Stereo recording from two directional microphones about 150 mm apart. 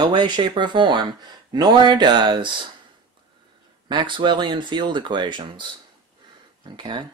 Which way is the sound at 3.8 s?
30° right (ahead or behind).